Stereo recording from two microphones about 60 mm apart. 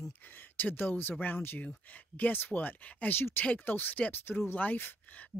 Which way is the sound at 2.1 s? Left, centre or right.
Left.